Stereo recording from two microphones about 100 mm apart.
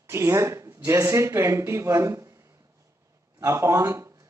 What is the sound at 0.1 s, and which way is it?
Speech, 30° right (ahead or behind).